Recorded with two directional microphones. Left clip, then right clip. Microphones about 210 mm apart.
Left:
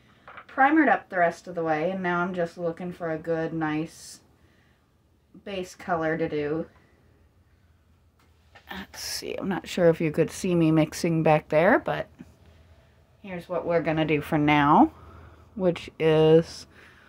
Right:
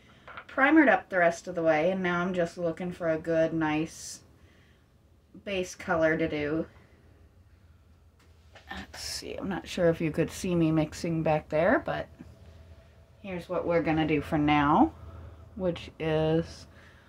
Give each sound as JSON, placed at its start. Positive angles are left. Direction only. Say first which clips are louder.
{"t": 0.2, "sound": "speech", "louder": "left 4 dB", "side_deg": 20}
{"t": 5.4, "sound": "speech", "louder": "right 2 dB", "side_deg": 20}
{"t": 8.6, "sound": "speech", "louder": "left 3 dB", "side_deg": 45}
{"t": 13.2, "sound": "speech", "louder": "left 2 dB", "side_deg": 25}